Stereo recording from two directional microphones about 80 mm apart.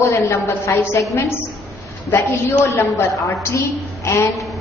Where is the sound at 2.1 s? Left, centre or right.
Left.